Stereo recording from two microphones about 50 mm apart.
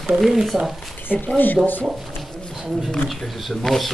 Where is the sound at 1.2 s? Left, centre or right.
Left.